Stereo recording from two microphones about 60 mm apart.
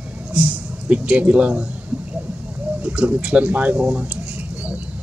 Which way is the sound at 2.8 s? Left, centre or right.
Centre.